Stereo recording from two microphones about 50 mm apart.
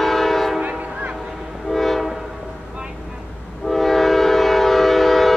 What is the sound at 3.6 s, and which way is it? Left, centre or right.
Train, centre.